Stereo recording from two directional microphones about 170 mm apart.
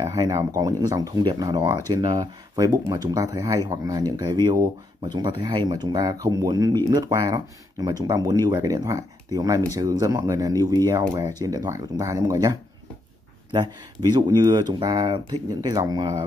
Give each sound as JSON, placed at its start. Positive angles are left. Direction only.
{"t": 0.0, "sound": "speech", "side_deg": -20}
{"t": 14.1, "sound": "speech", "side_deg": -25}